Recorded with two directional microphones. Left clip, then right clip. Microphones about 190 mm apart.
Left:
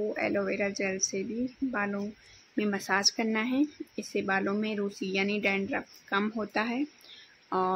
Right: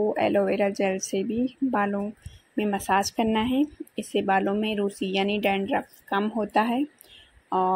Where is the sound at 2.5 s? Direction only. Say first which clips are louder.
Right 5 dB; 10° right (ahead or behind).